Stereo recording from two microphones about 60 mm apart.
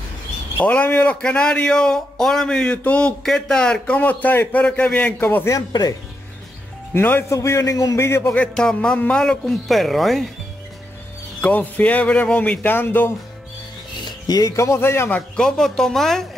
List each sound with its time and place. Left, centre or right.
0.6 s speech: left
3.3 s speech: centre
5.2 s speech: left
5.5 s speech: left
6.9 s a man's voice: left
7.2 s a man's voice: left
8.2 s speech: left
9.2 s speech: centre
11.4 s speech: left
12.6 s speech: left
14.2 s speech: left
14.5 s a man's voice: left
15.3 s speech: centre